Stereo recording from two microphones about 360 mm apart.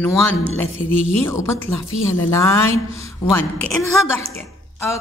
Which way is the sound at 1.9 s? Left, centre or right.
Left.